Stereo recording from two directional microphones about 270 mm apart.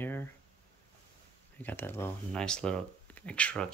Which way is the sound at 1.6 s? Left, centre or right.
Centre.